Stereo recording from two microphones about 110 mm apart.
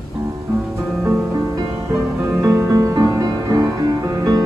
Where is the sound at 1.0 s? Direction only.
20° right (ahead or behind).